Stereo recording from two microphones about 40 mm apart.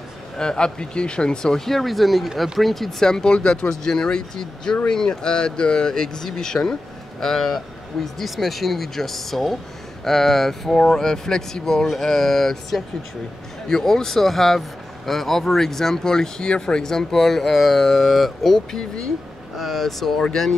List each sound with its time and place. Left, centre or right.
0.4 s speech: centre
3.0 s speech: centre